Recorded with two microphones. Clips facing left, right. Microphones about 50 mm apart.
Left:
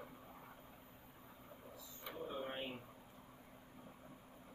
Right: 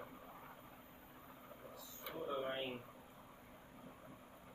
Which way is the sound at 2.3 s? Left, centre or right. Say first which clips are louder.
Right 4 dB; right.